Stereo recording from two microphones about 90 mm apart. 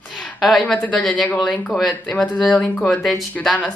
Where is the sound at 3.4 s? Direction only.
15° left (ahead or behind).